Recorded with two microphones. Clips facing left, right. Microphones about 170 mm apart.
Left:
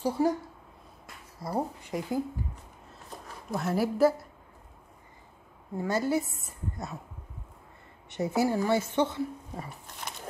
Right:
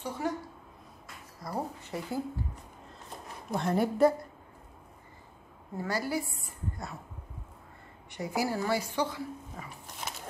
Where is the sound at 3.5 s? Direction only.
5° left (ahead or behind).